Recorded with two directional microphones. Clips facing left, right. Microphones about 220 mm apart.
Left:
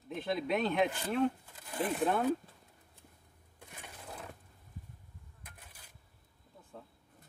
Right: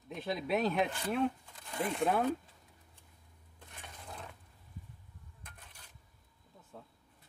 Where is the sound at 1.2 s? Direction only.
5° left (ahead or behind).